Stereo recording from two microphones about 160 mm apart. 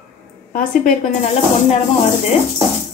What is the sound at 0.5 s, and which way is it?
Speech, 55° left (ahead or behind).